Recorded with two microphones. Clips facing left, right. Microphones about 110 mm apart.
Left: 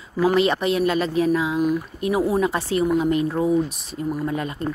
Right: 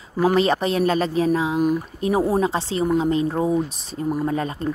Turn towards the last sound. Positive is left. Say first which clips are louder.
# right 2 dB
turn(degrees=-35)  # may be behind; listen again after turning